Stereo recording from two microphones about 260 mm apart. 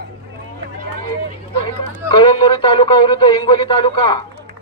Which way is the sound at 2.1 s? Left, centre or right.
Centre.